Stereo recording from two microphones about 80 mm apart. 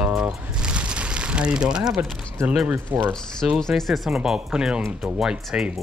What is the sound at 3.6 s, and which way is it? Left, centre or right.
Speech, centre.